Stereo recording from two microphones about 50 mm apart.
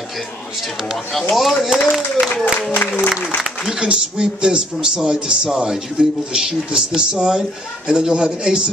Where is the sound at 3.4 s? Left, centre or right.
Centre.